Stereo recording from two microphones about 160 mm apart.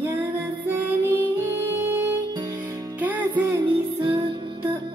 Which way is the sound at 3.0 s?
10° right (ahead or behind).